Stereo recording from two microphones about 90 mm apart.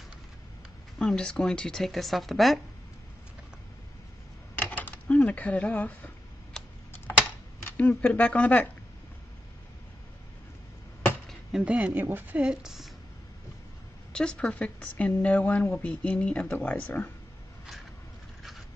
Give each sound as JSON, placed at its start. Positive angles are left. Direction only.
{"t": 0.9, "sound": "speech", "side_deg": 5}
{"t": 4.6, "sound": "a sound", "side_deg": 20}
{"t": 6.5, "sound": "computer keyboard", "side_deg": 5}
{"t": 7.6, "sound": "speech", "side_deg": 20}
{"t": 11.6, "sound": "a woman's voice", "side_deg": -15}
{"t": 14.1, "sound": "speech", "side_deg": 10}